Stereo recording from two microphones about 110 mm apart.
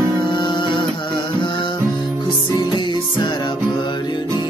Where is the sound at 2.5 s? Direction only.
45° left (ahead or behind).